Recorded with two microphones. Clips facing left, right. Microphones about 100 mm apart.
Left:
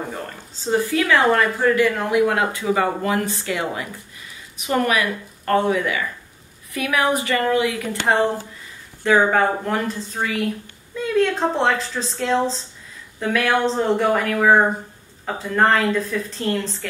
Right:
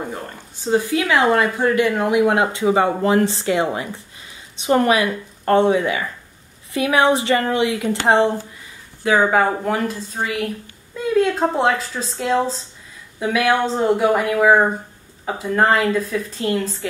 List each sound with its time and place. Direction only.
0.7 s a woman's voice: 15° right (ahead or behind)
9.0 s a woman's voice: 10° right (ahead or behind)